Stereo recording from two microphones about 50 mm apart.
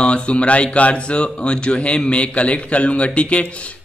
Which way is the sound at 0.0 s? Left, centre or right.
Left.